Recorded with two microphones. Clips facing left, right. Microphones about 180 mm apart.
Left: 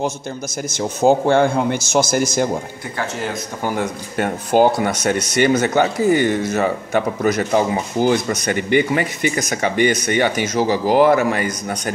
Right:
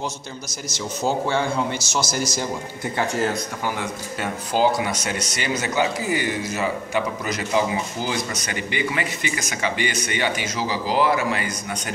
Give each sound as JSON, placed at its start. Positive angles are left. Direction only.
{"t": 0.7, "sound": "speech", "side_deg": 50}
{"t": 3.6, "sound": "speech", "side_deg": 45}